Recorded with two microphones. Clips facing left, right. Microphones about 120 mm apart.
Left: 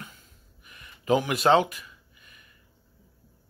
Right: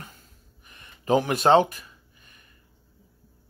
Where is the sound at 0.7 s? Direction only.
35° right (ahead or behind).